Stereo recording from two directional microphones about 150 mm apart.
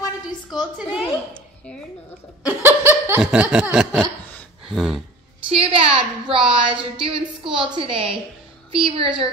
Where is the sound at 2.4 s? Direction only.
15° right (ahead or behind).